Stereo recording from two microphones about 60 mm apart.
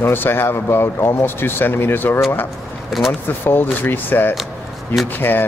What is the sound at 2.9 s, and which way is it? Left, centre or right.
Speech, centre.